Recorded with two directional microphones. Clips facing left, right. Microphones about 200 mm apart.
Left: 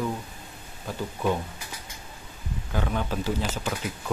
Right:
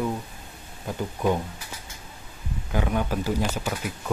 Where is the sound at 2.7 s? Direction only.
10° right (ahead or behind).